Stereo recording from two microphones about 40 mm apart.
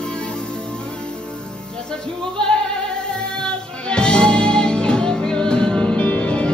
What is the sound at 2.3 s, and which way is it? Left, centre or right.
Music, centre.